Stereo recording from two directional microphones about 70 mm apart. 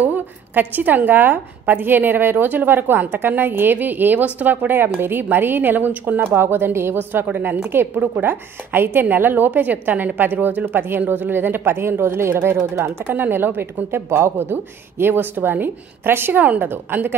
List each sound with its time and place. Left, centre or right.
0.0 s a woman's voice: right
13.0 s speech: right